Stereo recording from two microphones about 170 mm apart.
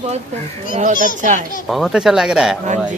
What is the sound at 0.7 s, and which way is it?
Speech, 50° right (ahead or behind).